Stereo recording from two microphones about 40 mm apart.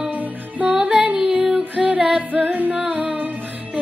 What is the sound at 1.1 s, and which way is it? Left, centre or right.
Female singing, right.